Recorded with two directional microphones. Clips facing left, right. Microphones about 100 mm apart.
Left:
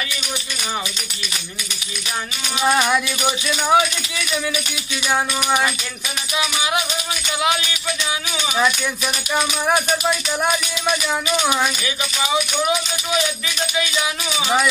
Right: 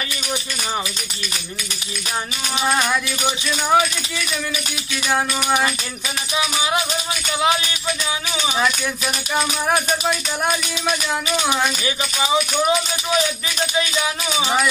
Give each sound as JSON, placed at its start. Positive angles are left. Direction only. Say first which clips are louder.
{"t": 2.6, "sound": "speech", "louder": "left 3 dB", "side_deg": 5}
{"t": 5.1, "sound": "speech", "louder": "even", "side_deg": 0}
{"t": 8.4, "sound": "speech", "louder": "left 1 dB", "side_deg": 0}
{"t": 11.8, "sound": "speech", "louder": "right 1 dB", "side_deg": -30}
{"t": 14.3, "sound": "speech", "louder": "left 1 dB", "side_deg": 0}